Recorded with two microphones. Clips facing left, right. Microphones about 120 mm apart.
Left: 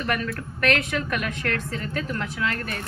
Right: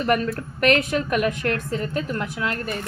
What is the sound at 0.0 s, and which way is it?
A woman's voice, 25° right (ahead or behind).